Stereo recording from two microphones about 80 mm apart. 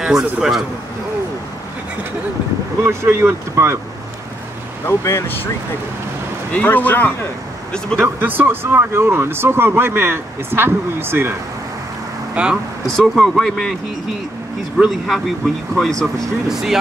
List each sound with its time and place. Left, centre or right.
0.0 s a man's voice: centre
2.8 s speech: right
4.8 s speech: left
6.5 s speech: left
8.0 s speech: right
12.4 s a man's voice: centre
12.9 s speech: centre
14.9 s speech: centre